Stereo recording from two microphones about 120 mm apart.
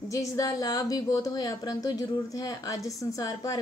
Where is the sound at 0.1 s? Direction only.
25° left (ahead or behind).